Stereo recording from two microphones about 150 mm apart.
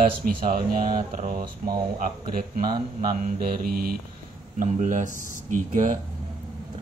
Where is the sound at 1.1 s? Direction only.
60° right (ahead or behind).